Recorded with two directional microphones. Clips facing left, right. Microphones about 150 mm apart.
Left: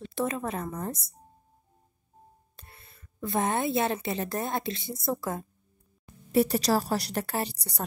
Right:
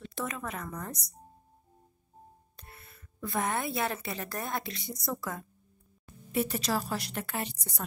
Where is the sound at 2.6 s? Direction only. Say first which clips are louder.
Right 2 dB; 25° left (ahead or behind).